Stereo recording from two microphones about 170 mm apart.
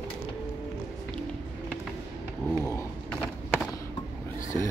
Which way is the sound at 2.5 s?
15° left (ahead or behind).